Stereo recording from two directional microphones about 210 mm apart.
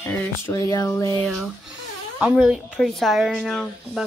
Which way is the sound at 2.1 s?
5° right (ahead or behind).